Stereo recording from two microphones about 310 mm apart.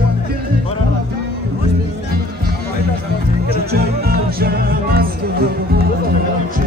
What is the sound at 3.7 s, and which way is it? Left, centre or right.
Music, right.